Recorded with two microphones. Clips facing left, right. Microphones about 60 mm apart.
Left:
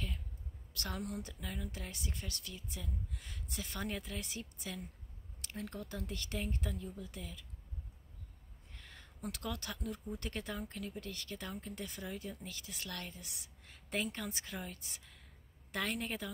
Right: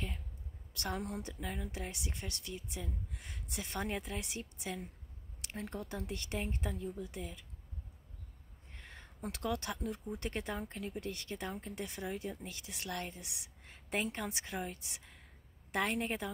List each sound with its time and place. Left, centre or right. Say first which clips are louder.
0.7 s speech: right 2 dB; right
8.7 s a woman's voice: right 3 dB; right